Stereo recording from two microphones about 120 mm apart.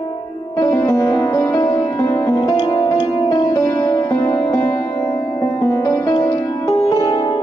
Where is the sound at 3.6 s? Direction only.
20° left (ahead or behind).